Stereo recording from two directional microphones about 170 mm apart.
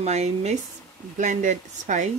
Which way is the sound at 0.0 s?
40° right (ahead or behind).